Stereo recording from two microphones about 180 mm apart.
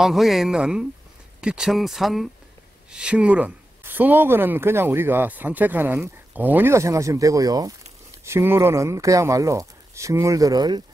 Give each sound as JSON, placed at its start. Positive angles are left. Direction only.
{"t": 0.0, "sound": "speech", "side_deg": 0}